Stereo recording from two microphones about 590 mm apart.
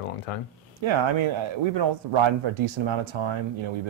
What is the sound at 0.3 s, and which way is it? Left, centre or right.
Speech, left.